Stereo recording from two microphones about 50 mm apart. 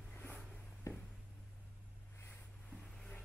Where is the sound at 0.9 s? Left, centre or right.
Left.